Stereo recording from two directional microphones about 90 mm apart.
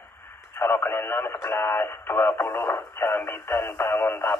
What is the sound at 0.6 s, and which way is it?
Speech, 25° left (ahead or behind).